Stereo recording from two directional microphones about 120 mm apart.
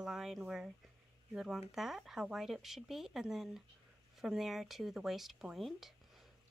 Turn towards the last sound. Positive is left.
turn(degrees=0)  # may be behind; listen again after turning